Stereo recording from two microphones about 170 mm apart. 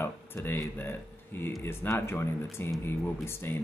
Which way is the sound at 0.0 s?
15° left (ahead or behind).